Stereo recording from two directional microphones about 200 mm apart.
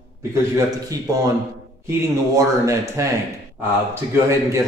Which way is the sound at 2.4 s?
15° right (ahead or behind).